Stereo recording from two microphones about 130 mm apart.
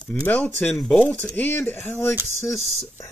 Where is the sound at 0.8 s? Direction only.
Centre (ahead or behind); by 2.2 s 15° left (ahead or behind).